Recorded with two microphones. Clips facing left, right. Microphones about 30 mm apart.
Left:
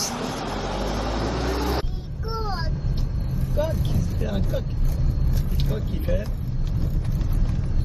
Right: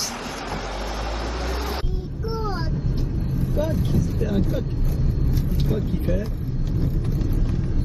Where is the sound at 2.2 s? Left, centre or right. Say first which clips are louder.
Right 1 dB; left.